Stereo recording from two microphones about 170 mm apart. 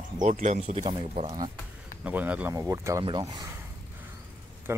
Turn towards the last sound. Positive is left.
turn(degrees=-15)  # may be behind; listen again after turning